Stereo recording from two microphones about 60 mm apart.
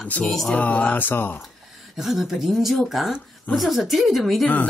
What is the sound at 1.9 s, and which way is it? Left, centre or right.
Speech, centre.